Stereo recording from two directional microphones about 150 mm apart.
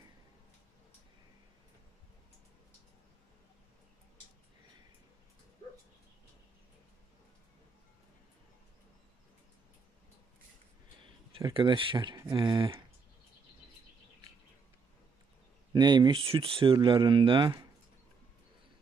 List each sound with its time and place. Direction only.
11.4 s speech: 35° right (ahead or behind)
15.7 s speech: 30° right (ahead or behind)